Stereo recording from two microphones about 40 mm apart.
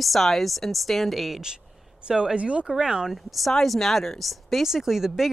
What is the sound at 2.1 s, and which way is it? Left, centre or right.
Speech, right.